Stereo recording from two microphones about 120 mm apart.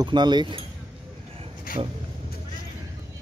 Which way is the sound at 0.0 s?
40° right (ahead or behind).